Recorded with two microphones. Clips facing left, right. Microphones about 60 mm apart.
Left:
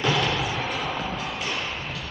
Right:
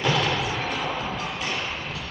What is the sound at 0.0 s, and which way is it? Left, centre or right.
Thump, centre.